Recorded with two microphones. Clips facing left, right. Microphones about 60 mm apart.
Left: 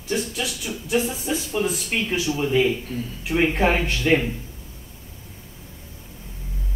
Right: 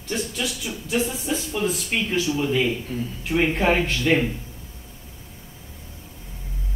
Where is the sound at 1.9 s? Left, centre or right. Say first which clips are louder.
Right 1 dB; centre.